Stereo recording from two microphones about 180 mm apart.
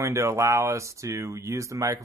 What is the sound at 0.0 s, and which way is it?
Speech, 15° right (ahead or behind).